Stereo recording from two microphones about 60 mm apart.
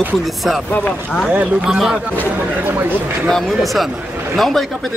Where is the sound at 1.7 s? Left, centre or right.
Centre.